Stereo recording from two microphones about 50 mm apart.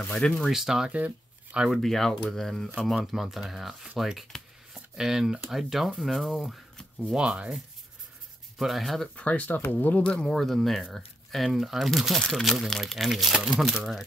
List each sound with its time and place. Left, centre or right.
0.5 s speech: centre
0.8 s shuffling cards: right
1.7 s speech: centre
3.1 s speech: centre
7.2 s speech: centre
8.5 s speech: centre
9.1 s speech: left
10.2 s speech: centre
13.3 s speech: centre
13.6 s speech: centre